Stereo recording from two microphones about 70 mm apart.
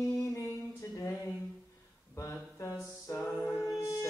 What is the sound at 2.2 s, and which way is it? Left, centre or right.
Mantra, left.